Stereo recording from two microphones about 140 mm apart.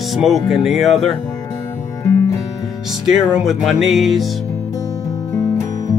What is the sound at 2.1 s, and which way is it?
Music, 20° left (ahead or behind).